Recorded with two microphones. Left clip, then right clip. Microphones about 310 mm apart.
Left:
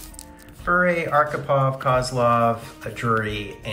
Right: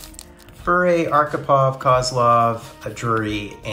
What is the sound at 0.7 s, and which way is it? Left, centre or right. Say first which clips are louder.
Speech: right 3 dB; centre.